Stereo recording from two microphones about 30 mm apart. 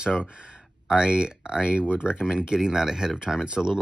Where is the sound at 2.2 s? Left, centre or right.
Centre; by 3.7 s right.